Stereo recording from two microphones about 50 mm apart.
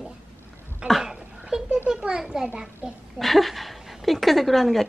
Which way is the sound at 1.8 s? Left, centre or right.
Centre.